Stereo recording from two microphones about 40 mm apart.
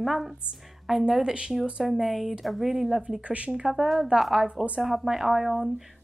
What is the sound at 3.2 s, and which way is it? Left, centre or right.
Speech, right.